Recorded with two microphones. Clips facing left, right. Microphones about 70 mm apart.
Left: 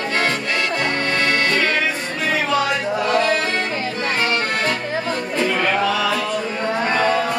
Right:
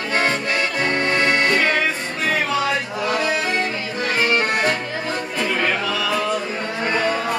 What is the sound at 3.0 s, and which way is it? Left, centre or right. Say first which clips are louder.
Music: left 3 dB; centre.